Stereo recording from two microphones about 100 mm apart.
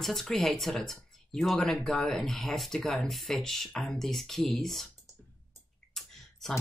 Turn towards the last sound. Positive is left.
turn(degrees=5)  # may be behind; listen again after turning